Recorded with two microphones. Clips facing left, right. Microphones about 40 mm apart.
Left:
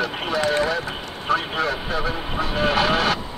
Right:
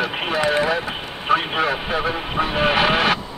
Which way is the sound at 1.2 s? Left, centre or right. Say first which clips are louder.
Right 3 dB; right.